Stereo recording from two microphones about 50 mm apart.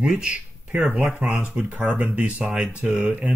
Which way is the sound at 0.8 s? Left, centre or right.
Right.